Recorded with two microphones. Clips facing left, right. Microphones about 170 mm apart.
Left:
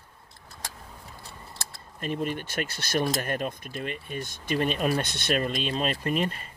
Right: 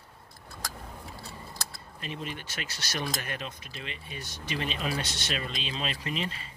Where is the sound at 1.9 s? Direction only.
50° left (ahead or behind).